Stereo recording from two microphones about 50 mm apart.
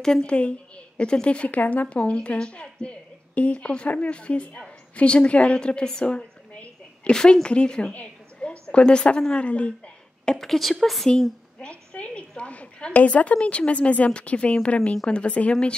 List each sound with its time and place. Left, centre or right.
0.0 s a woman's voice: centre
10.2 s a woman's voice: centre
11.6 s a woman's voice: left